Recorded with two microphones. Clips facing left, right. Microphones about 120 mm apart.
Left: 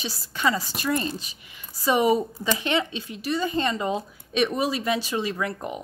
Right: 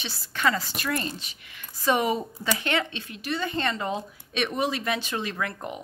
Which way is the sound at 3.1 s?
30° left (ahead or behind).